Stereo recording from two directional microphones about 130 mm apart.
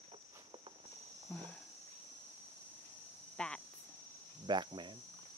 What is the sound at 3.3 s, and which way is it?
Cricket, 5° left (ahead or behind).